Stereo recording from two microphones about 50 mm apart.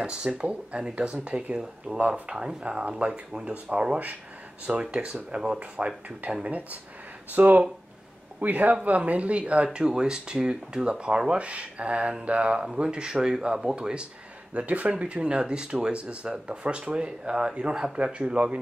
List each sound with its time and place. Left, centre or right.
0.0 s speech: centre
2.0 s speech: right
9.7 s speech: centre
14.5 s speech: right
17.9 s speech: right